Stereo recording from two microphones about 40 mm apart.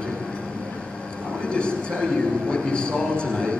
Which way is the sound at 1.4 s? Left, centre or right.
Left.